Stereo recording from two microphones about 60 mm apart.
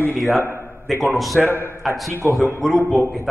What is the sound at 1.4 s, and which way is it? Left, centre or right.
Speech, left.